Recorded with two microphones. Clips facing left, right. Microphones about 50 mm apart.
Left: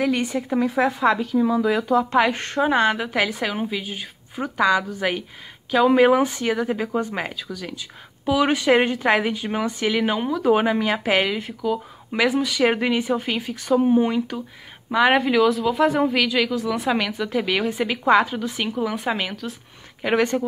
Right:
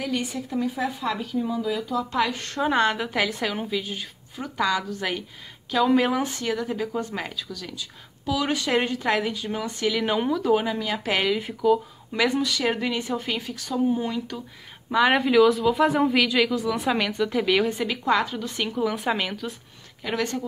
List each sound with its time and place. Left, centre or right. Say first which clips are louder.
0.0 s speech: left 6 dB; left
2.0 s a woman's voice: left 4 dB; left
2.6 s a woman's voice: left 3 dB; centre
10.0 s speech: left 1 dB; centre
10.5 s a woman's voice: left 7 dB; left
11.1 s a woman's voice: left 1 dB; centre
11.3 s a woman's voice: right 3 dB; centre
12.6 s speech: left 9 dB; left
12.9 s a woman's voice: left 5 dB; centre
13.7 s a woman's voice: left 7 dB; left
14.9 s speech: left 2 dB; centre
17.7 s a woman's voice: left 5 dB; centre
20.0 s speech: left 7 dB; left